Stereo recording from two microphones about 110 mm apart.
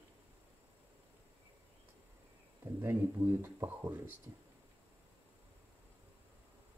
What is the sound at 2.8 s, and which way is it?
Speech, 20° right (ahead or behind).